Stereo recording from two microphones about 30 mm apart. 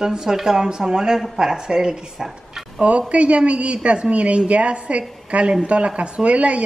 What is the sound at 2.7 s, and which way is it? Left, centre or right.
A woman's voice, right.